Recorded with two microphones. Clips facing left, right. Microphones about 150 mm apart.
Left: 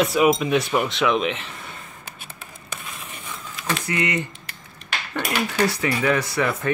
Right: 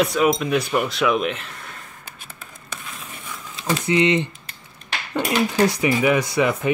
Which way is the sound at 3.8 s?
20° right (ahead or behind).